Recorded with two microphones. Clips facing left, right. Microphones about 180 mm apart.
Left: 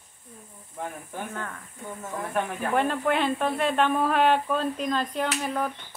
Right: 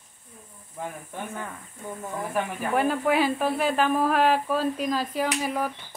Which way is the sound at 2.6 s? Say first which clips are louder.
Right 1 dB; 5° right (ahead or behind).